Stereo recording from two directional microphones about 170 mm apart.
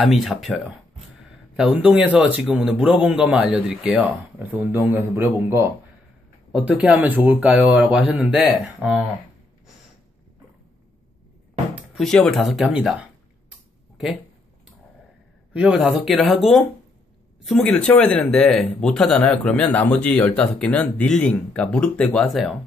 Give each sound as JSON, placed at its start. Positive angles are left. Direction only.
{"t": 0.0, "sound": "speech", "side_deg": 0}
{"t": 1.6, "sound": "a man's voice", "side_deg": -5}
{"t": 11.7, "sound": "speech", "side_deg": 0}
{"t": 15.5, "sound": "speech", "side_deg": -5}
{"t": 17.5, "sound": "speech", "side_deg": 5}